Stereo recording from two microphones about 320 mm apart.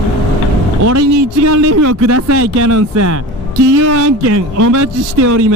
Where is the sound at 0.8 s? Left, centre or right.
Right.